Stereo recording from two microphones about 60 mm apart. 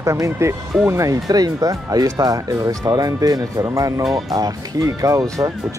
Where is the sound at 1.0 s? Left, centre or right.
Right.